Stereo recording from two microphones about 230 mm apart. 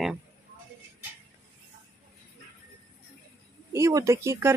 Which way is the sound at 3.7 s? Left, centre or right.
Centre.